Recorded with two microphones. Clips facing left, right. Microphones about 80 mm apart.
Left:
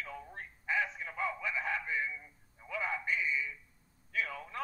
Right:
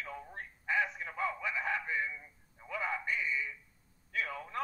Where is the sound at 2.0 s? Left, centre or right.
Right.